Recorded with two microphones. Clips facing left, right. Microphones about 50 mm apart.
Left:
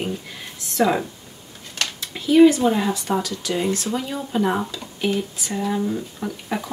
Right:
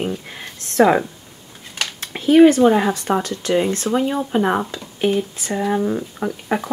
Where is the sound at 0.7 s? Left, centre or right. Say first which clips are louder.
Right 6 dB; right.